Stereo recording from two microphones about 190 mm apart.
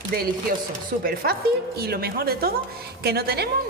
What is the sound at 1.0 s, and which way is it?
A woman's voice, 55° right (ahead or behind).